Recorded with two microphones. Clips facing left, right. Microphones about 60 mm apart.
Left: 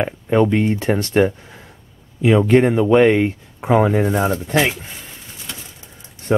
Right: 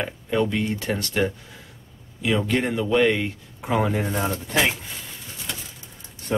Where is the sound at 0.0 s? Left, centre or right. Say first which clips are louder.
Left 7 dB; left.